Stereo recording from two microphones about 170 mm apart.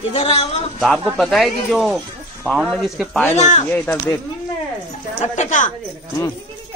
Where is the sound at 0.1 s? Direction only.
35° left (ahead or behind).